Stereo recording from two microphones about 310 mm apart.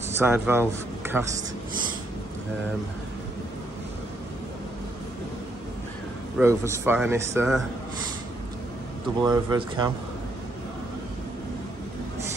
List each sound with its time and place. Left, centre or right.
0.2 s a man's voice: centre
6.3 s speech: centre
9.2 s speech: centre